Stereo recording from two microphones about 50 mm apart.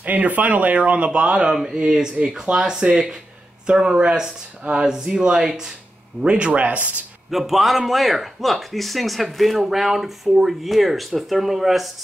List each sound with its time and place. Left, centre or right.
0.0 s speech: right
5.5 s a man's voice: centre
6.2 s speech: right
7.2 s a man's voice: centre